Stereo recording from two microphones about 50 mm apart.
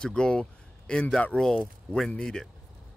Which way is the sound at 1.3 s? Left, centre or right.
Right.